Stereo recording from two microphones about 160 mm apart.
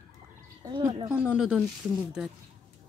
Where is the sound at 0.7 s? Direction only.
30° right (ahead or behind).